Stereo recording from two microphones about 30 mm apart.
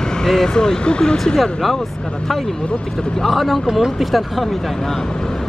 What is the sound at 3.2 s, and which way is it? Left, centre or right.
Speech, centre.